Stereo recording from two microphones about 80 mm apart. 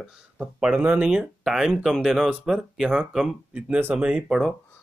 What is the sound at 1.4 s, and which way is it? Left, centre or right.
Speech, centre.